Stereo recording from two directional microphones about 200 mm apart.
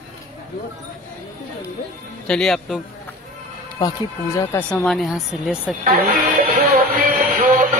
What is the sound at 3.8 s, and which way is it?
Speech, 20° left (ahead or behind).